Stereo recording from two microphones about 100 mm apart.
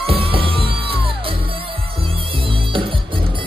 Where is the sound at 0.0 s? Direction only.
70° right (ahead or behind).